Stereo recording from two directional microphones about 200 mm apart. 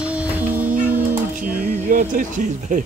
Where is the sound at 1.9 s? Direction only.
40° right (ahead or behind).